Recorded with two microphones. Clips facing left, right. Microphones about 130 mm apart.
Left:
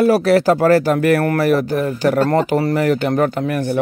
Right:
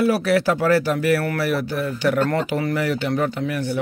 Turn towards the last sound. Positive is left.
turn(degrees=45)  # may be behind; listen again after turning